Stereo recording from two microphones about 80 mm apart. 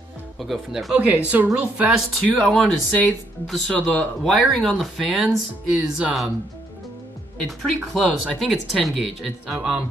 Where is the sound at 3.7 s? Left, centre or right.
Centre.